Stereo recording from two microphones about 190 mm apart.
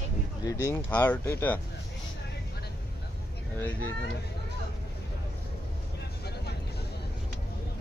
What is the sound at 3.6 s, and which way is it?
Speech, 10° left (ahead or behind).